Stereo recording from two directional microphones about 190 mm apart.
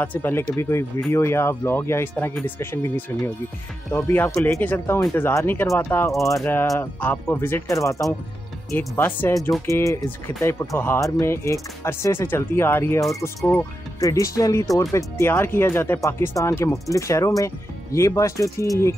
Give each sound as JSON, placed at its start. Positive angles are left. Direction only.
{"t": 0.0, "sound": "speech", "side_deg": 10}
{"t": 4.0, "sound": "speech", "side_deg": 10}